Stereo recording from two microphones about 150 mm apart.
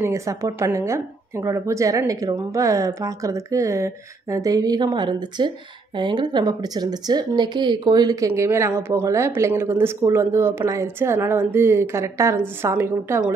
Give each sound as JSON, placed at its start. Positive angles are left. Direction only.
{"t": 0.0, "sound": "a woman's voice", "side_deg": -20}